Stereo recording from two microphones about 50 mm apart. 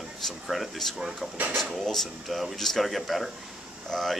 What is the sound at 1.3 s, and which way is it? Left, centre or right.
Speech, right.